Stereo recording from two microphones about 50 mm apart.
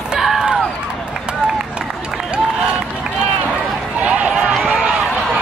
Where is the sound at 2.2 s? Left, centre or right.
Centre.